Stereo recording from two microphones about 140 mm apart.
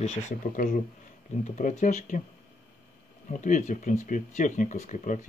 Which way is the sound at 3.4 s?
70° left (ahead or behind).